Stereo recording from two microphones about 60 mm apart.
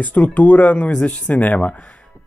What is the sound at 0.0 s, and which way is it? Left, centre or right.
Speech, left.